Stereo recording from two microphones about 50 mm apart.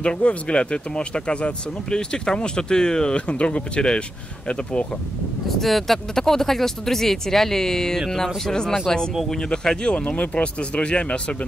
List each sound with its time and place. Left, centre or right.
0.0 s speech: left
5.6 s speech: centre; by 11.3 s left